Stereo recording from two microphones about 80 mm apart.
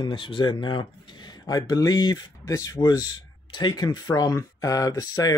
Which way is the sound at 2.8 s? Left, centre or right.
Left.